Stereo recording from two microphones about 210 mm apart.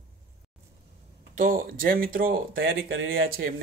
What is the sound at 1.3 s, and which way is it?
Speech, 40° right (ahead or behind).